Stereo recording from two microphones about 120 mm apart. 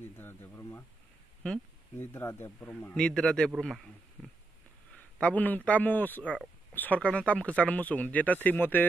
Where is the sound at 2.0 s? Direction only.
20° left (ahead or behind).